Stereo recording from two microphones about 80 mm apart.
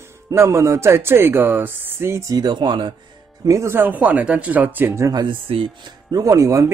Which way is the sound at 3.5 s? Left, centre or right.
Right.